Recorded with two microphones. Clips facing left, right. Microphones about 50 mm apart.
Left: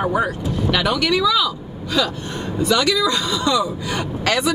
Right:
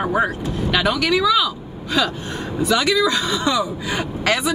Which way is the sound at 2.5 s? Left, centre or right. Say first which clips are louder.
Even; centre.